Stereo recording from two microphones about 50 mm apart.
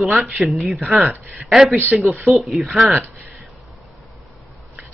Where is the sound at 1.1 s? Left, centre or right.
Right.